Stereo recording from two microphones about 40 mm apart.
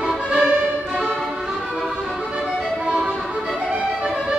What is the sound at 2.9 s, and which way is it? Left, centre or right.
Music, right.